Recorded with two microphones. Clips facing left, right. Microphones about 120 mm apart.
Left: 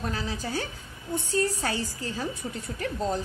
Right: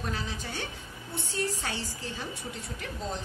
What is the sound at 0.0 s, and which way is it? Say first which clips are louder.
A woman's voice: left 4 dB; 40° left (ahead or behind).